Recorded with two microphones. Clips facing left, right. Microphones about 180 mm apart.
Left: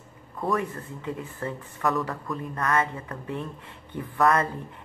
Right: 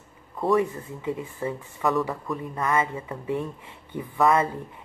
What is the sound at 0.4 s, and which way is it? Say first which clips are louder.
A woman's voice: right 5 dB; 5° right (ahead or behind).